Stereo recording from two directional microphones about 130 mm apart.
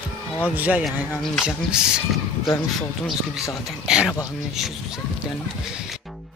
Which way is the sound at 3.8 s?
5° right (ahead or behind).